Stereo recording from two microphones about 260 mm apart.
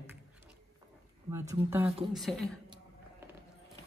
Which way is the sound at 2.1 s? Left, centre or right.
Centre.